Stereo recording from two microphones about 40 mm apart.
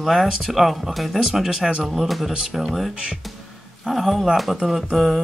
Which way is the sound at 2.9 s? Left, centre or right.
Right.